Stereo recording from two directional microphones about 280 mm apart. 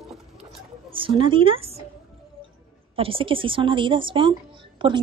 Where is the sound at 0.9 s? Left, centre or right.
Centre.